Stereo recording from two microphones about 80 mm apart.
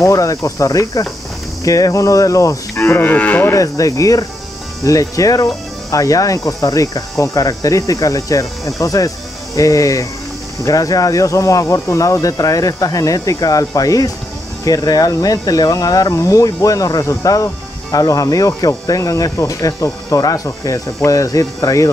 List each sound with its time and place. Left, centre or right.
0.0 s speech: left
2.8 s cattle: left
3.5 s speech: left